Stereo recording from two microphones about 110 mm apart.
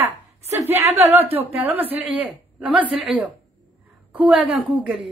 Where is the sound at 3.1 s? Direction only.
55° right (ahead or behind).